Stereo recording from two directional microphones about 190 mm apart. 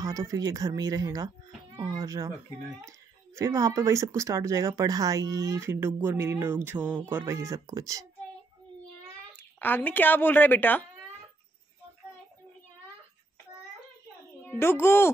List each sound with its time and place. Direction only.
0.0 s speech: 20° right (ahead or behind)
3.3 s speech: 15° right (ahead or behind)
9.4 s speech: 10° left (ahead or behind)
14.5 s speech: 10° left (ahead or behind)